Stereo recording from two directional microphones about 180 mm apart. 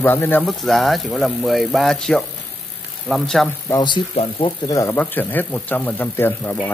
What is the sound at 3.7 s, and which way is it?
Speech, 25° left (ahead or behind).